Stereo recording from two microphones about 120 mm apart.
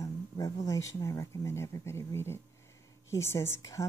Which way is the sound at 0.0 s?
25° left (ahead or behind).